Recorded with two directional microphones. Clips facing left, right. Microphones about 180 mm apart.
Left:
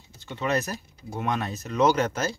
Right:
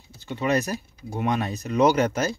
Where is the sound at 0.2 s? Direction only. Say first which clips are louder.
Right 3 dB; 10° right (ahead or behind).